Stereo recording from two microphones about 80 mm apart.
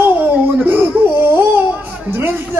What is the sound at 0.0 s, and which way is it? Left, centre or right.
Baby cry, right.